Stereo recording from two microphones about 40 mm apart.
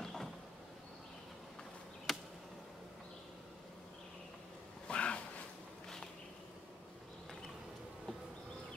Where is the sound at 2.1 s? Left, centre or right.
Centre.